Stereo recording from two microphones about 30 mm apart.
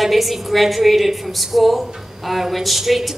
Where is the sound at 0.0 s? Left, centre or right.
Centre.